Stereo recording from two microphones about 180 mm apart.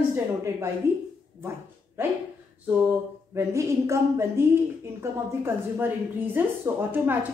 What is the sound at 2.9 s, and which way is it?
A woman's voice, 15° right (ahead or behind).